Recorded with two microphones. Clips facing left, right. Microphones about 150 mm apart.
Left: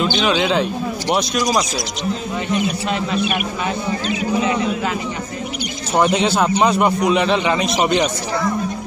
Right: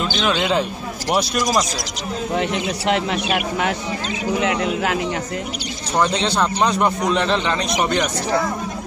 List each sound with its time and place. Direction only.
0.0 s speech: 5° left (ahead or behind)
2.3 s speech: 70° right (ahead or behind)
5.9 s a man's voice: 10° left (ahead or behind)
7.8 s speech: 20° left (ahead or behind)